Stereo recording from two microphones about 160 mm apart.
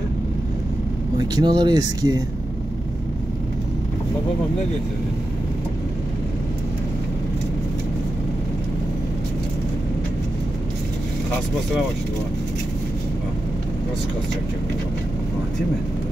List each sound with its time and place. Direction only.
1.1 s speech: 25° right (ahead or behind)